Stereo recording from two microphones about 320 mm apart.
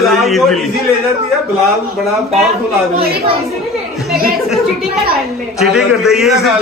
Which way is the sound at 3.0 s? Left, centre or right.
Right.